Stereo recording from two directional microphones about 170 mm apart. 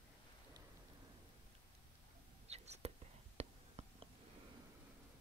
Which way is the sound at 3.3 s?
40° right (ahead or behind).